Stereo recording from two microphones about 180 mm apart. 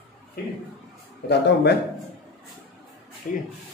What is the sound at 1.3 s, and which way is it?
Speech, 65° left (ahead or behind).